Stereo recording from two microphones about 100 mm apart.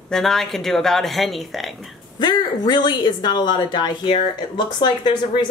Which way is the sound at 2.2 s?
45° left (ahead or behind).